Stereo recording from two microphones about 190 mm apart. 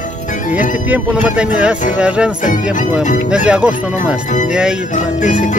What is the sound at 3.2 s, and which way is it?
Speech, 5° right (ahead or behind).